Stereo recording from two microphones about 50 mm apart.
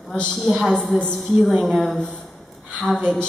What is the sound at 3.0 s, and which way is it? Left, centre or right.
Speech, centre.